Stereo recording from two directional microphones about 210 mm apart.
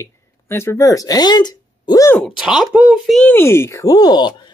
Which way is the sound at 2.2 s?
Centre (ahead or behind).